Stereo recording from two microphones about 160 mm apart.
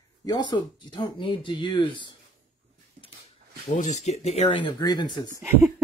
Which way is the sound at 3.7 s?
50° left (ahead or behind).